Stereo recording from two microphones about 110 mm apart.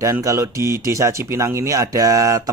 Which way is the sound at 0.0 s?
30° right (ahead or behind).